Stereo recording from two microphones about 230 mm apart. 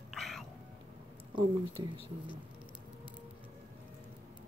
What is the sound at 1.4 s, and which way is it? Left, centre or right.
Speech, right.